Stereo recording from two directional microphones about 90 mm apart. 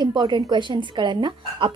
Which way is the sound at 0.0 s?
55° right (ahead or behind).